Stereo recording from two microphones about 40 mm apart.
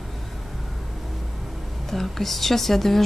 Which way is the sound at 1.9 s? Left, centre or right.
Centre.